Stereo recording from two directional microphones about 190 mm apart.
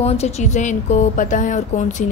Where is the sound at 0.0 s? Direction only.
35° left (ahead or behind).